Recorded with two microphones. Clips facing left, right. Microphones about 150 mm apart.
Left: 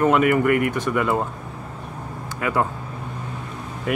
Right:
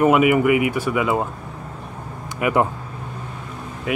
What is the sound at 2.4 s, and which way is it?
Speech, 15° right (ahead or behind).